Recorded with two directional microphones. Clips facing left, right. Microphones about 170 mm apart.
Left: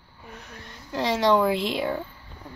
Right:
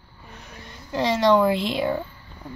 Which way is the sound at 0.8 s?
5° left (ahead or behind).